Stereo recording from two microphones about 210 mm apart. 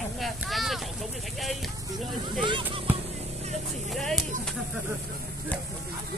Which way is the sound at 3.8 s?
Centre (ahead or behind).